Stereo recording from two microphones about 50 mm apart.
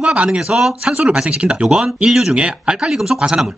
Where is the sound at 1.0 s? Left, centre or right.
Right; by 2.3 s centre.